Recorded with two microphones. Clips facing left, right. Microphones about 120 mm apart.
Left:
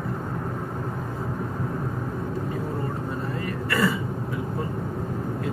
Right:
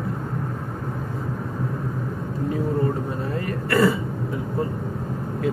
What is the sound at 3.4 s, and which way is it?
Throat clearing, 50° right (ahead or behind).